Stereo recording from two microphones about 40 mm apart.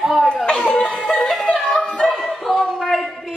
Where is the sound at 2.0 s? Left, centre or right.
Centre.